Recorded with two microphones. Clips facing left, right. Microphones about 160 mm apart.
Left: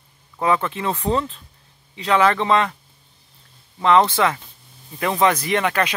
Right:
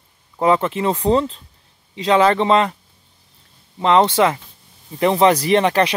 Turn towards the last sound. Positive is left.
turn(degrees=-30)  # may be behind; listen again after turning